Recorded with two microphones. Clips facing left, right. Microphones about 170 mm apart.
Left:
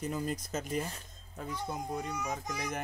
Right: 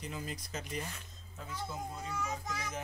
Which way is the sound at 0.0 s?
45° left (ahead or behind).